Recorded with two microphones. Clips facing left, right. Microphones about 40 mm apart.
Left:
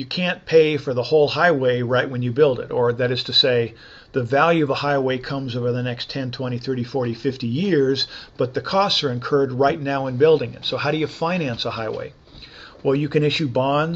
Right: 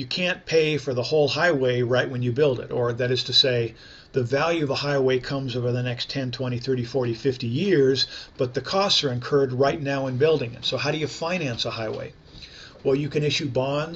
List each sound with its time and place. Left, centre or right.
0.0 s speech: centre
12.8 s speech: left